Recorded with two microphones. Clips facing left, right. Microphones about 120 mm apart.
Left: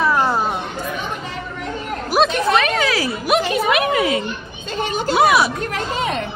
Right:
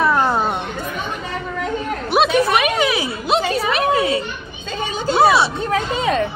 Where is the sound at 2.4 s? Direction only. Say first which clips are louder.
Even; 15° right (ahead or behind); by 4.2 s 30° right (ahead or behind).